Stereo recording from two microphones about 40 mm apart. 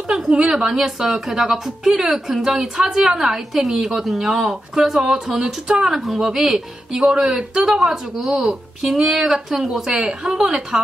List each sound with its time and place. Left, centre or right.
0.1 s a woman's voice: centre
5.9 s a woman's voice: centre
9.7 s a woman's voice: centre